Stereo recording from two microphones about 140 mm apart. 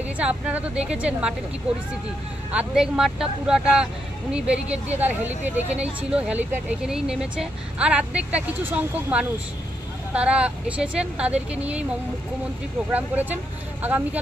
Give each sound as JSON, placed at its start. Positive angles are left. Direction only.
{"t": 0.2, "sound": "speech", "side_deg": -10}
{"t": 2.5, "sound": "speech", "side_deg": -5}
{"t": 5.3, "sound": "speech", "side_deg": -55}
{"t": 5.8, "sound": "speech", "side_deg": -5}
{"t": 12.9, "sound": "speech", "side_deg": -10}